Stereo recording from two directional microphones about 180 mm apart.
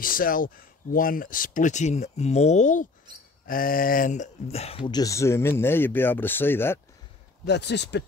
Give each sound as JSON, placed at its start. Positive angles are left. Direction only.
{"t": 0.0, "sound": "speech", "side_deg": 50}
{"t": 7.4, "sound": "speech", "side_deg": 70}